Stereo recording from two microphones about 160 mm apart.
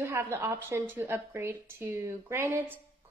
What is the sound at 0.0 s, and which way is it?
A woman's voice, 15° right (ahead or behind).